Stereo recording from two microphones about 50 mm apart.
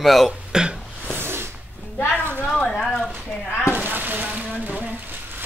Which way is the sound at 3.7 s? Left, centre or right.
Right.